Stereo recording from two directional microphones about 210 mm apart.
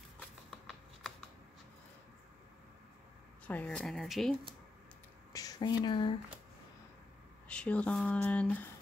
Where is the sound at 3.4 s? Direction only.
5° left (ahead or behind).